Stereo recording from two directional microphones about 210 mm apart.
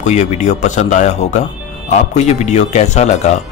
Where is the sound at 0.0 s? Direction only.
35° left (ahead or behind).